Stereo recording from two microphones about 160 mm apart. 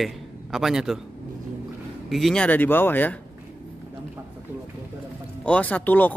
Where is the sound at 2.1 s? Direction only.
Centre (ahead or behind).